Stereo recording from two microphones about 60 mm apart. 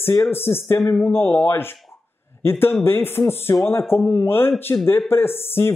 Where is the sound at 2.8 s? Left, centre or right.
Left.